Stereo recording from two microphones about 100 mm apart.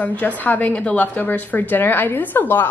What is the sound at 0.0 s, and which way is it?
A woman's voice, 15° left (ahead or behind).